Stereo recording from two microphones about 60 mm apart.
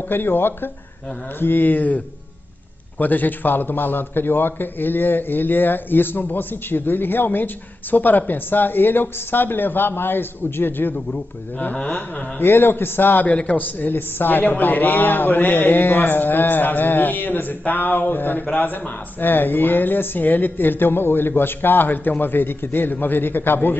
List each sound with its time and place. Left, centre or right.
0.1 s a man's voice: left
3.0 s a man's voice: left
11.7 s a sound: centre
12.4 s a man's voice: left